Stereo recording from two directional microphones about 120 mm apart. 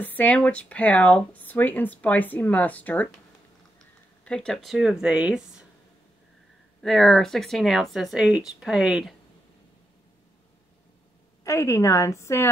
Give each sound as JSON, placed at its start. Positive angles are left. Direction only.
{"t": 0.0, "sound": "speech", "side_deg": 15}
{"t": 4.2, "sound": "speech", "side_deg": 10}
{"t": 6.8, "sound": "speech", "side_deg": 5}
{"t": 11.4, "sound": "a woman's voice", "side_deg": 25}